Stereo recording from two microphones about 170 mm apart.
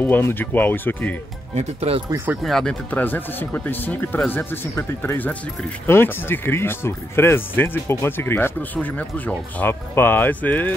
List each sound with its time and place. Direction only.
0.0 s speech: 10° left (ahead or behind)
1.5 s speech: 40° right (ahead or behind)
2.0 s speech: 15° right (ahead or behind)
2.4 s speech: 5° left (ahead or behind)